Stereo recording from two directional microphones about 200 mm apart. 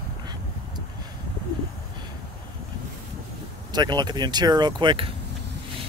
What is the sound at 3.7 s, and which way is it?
Speech, 20° right (ahead or behind).